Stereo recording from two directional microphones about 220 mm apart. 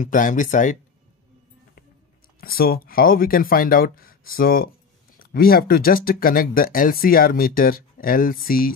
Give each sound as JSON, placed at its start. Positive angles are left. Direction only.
{"t": 0.0, "sound": "speech", "side_deg": 35}
{"t": 2.4, "sound": "speech", "side_deg": 45}